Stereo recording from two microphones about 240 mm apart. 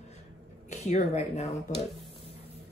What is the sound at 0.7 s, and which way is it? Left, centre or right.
A woman's voice, left.